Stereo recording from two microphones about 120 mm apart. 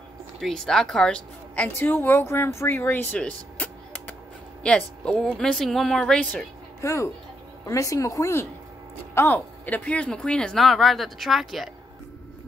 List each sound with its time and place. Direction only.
0.4 s speech: 5° left (ahead or behind)
6.8 s speech: 25° left (ahead or behind)
9.8 s speech: 10° left (ahead or behind)